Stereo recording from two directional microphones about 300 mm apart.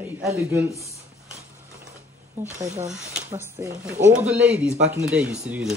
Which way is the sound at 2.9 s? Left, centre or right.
Centre.